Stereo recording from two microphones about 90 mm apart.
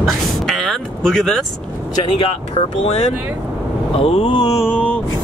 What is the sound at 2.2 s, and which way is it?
Vehicle, 90° left.